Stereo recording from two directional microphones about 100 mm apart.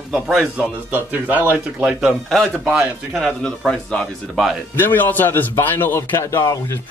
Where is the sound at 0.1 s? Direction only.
Centre (ahead or behind).